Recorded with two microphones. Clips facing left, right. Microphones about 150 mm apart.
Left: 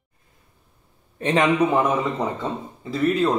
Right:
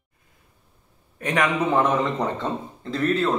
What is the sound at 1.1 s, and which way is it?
Speech, 25° left (ahead or behind).